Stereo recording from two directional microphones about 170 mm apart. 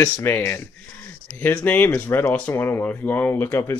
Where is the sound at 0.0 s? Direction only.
15° left (ahead or behind).